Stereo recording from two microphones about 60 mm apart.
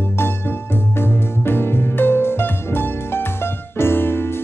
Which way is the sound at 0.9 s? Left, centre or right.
Left.